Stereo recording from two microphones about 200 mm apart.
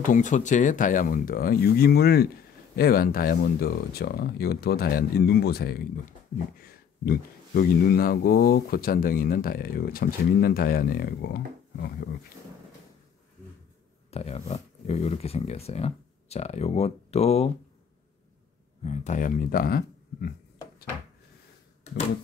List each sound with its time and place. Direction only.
0.0 s speech: 40° left (ahead or behind)
14.1 s speech: 30° left (ahead or behind)
18.8 s speech: 35° left (ahead or behind)
21.8 s a sound: 35° left (ahead or behind)